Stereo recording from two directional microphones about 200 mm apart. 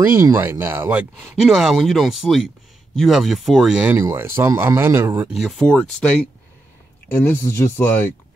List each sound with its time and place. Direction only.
0.0 s speech: 10° right (ahead or behind); by 8.0 s 10° left (ahead or behind)